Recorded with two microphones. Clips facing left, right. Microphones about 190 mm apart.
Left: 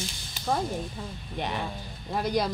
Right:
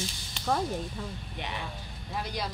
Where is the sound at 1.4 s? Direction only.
45° left (ahead or behind).